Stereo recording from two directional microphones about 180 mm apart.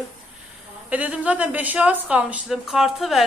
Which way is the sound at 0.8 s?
10° right (ahead or behind).